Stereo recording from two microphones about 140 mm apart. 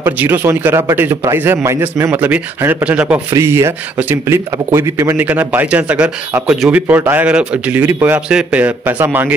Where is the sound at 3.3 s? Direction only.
20° right (ahead or behind).